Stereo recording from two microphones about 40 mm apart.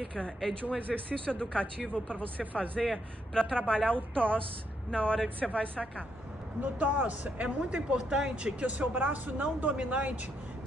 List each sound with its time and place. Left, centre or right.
0.6 s speech: left
2.8 s speech: centre
6.6 s speech: right
7.7 s speech: right
8.9 s speech: right